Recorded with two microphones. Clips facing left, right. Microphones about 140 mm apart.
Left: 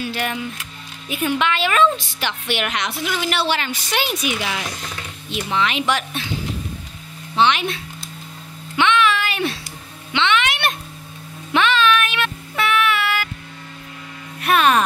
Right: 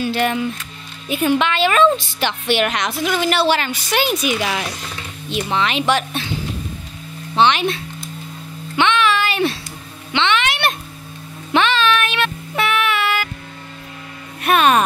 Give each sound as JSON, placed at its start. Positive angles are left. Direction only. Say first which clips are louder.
{"t": 0.0, "sound": "a woman's voice", "louder": "right 6 dB", "side_deg": -30}
{"t": 2.7, "sound": "a woman's voice", "louder": "right 4 dB", "side_deg": -45}
{"t": 5.5, "sound": "speech", "louder": "right 2 dB", "side_deg": -30}
{"t": 7.3, "sound": "speech", "louder": "right 2 dB", "side_deg": -30}
{"t": 8.7, "sound": "a sound", "louder": "right 1 dB", "side_deg": -30}
{"t": 10.1, "sound": "music", "louder": "right 1 dB", "side_deg": -30}
{"t": 14.4, "sound": "music", "louder": "right 2 dB", "side_deg": -20}